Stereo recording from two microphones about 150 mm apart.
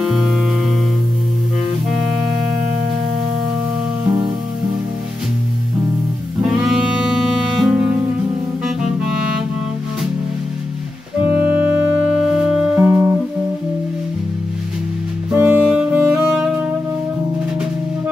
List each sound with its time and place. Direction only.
0.0 s music: 5° right (ahead or behind)
6.4 s music: 5° right (ahead or behind)
12.7 s music: 15° right (ahead or behind)
15.3 s music: 15° right (ahead or behind)